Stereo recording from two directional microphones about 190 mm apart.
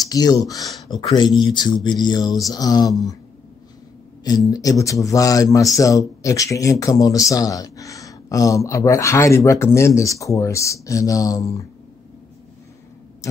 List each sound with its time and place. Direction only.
0.0 s speech: 20° left (ahead or behind)
4.5 s speech: 20° left (ahead or behind)
13.2 s tick: 15° left (ahead or behind)